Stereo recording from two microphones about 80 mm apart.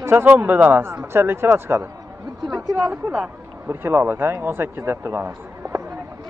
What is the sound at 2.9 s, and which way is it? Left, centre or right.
Speech, centre.